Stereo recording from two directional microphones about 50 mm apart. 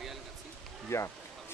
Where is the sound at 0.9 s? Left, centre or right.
Left.